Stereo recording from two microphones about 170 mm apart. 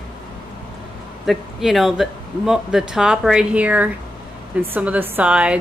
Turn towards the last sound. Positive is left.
turn(degrees=-5)  # may be behind; listen again after turning